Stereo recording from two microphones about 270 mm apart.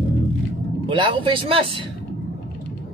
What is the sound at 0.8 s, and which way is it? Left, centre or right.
Speech, centre.